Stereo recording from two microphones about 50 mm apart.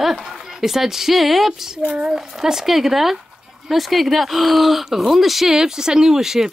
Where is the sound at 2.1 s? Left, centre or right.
Centre.